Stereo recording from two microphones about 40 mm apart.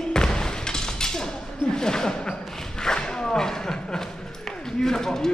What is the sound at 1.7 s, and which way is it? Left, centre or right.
Speech, centre.